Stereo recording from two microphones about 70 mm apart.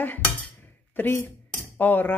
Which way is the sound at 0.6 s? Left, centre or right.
Left.